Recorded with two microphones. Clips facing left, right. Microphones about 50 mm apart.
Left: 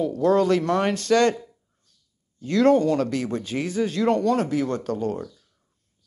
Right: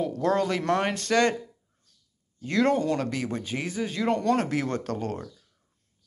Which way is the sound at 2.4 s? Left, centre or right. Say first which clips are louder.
Left 5 dB; right.